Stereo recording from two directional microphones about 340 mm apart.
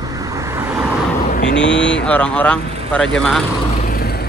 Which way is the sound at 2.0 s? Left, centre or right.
Centre.